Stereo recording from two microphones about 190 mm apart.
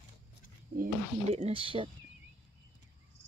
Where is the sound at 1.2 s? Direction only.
35° right (ahead or behind).